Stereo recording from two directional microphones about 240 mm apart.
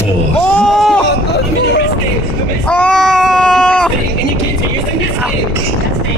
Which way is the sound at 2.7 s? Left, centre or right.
Centre.